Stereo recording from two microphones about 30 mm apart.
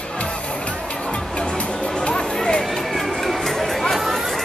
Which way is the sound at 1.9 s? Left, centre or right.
Left.